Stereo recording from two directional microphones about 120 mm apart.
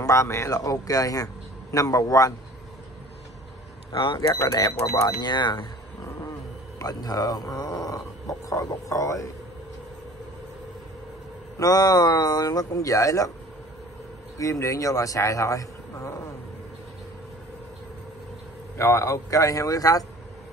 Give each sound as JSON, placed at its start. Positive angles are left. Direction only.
{"t": 0.0, "sound": "a man's voice", "side_deg": 25}
{"t": 3.9, "sound": "speech", "side_deg": 45}
{"t": 4.2, "sound": "speech", "side_deg": 30}
{"t": 6.8, "sound": "speech", "side_deg": 30}
{"t": 11.5, "sound": "speech", "side_deg": 30}
{"t": 14.4, "sound": "a man's voice", "side_deg": 25}
{"t": 18.8, "sound": "a man's voice", "side_deg": 25}